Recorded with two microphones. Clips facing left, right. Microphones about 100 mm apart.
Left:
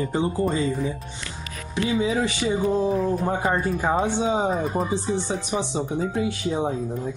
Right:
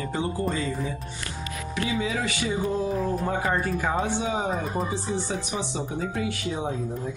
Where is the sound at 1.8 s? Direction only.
20° left (ahead or behind).